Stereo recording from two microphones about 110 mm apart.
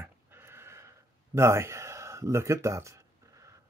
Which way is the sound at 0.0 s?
20° right (ahead or behind).